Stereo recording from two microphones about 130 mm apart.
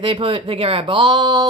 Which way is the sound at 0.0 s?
45° right (ahead or behind).